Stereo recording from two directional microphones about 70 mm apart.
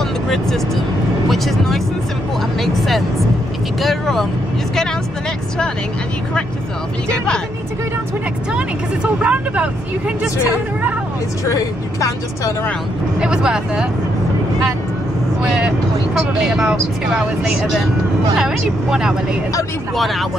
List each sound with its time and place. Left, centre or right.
1.3 s speech: centre
3.8 s speech: centre
8.5 s speech: centre
11.4 s speech: left
13.2 s speech: centre
15.4 s speech: centre